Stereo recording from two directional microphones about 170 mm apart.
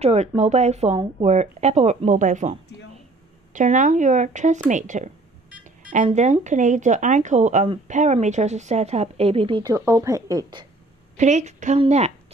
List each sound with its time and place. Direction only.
0.0 s speech: 40° right (ahead or behind)
3.5 s speech: 50° right (ahead or behind)
5.6 s beep: 50° right (ahead or behind)
6.0 s speech: 45° right (ahead or behind)
9.6 s a woman's voice: 20° right (ahead or behind)
11.1 s speech: 45° right (ahead or behind)